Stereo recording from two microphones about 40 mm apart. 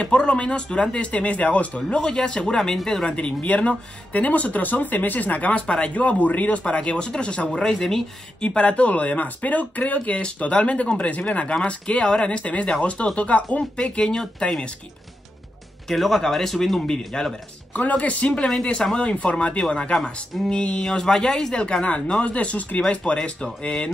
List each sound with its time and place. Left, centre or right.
0.0 s speech: left
1.9 s speech: centre
3.1 s speech: left
11.4 s speech: left
15.9 s speech: centre
17.1 s speech: centre
17.7 s speech: left
18.6 s speech: centre
18.9 s speech: left
21.8 s speech: left
22.8 s speech: left